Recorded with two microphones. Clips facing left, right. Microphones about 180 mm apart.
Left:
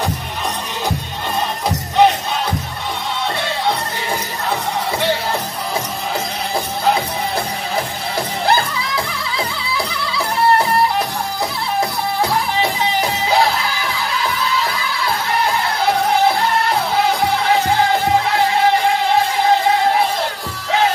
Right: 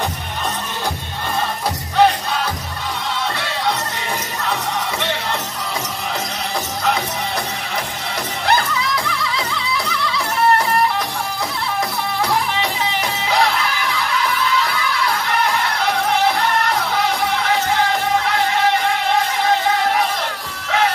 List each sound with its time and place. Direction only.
1.7 s crowd: 20° left (ahead or behind)
8.5 s music: 30° left (ahead or behind)
13.0 s music: 30° left (ahead or behind)